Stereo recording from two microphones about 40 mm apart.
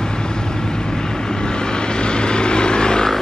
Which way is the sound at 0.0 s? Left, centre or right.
Centre.